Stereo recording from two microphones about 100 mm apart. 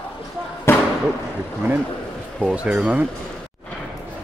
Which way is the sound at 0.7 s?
25° left (ahead or behind).